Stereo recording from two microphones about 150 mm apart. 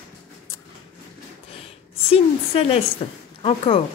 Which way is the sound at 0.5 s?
20° left (ahead or behind).